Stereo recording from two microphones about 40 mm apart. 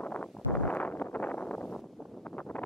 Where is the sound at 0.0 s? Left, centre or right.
Left.